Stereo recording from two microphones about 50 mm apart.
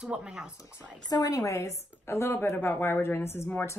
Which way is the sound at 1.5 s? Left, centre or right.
Left.